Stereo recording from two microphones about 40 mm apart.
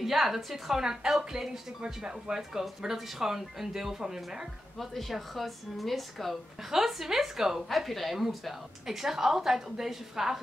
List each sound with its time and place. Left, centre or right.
0.0 s speech: centre
4.7 s a woman's voice: centre
6.7 s a woman's voice: centre